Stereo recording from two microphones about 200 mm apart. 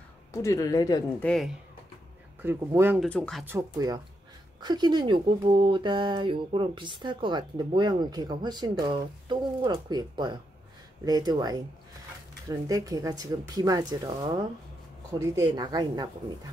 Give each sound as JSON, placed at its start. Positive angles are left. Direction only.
{"t": 0.3, "sound": "speech", "side_deg": 15}
{"t": 1.2, "sound": "speech", "side_deg": 5}
{"t": 2.4, "sound": "speech", "side_deg": -10}
{"t": 3.0, "sound": "speech", "side_deg": 5}
{"t": 3.4, "sound": "speech", "side_deg": -15}